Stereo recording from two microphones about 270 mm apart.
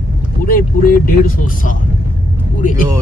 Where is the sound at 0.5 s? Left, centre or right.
Left.